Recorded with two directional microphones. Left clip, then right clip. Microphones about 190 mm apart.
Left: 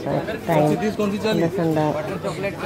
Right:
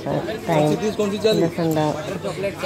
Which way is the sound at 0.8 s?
20° left (ahead or behind).